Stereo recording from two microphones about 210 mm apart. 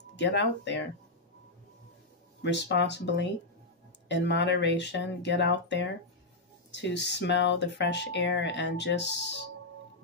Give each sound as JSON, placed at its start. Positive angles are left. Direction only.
{"t": 0.1, "sound": "speech", "side_deg": 55}
{"t": 2.4, "sound": "speech", "side_deg": 55}